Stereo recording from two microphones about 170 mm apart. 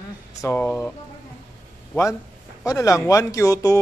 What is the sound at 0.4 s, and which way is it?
Speech, 15° left (ahead or behind).